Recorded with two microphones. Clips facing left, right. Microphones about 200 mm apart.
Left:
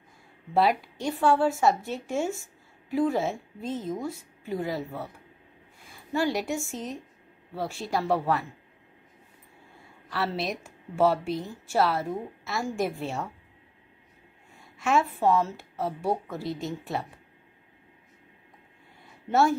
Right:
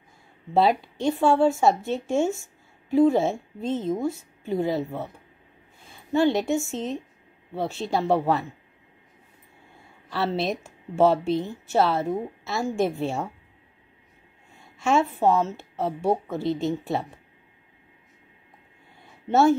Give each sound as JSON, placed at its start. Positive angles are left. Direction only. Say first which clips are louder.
{"t": 0.6, "sound": "a woman's voice", "louder": "right 3 dB", "side_deg": -25}
{"t": 10.0, "sound": "speech", "louder": "right 4 dB", "side_deg": -25}
{"t": 14.8, "sound": "speech", "louder": "right 3 dB", "side_deg": -25}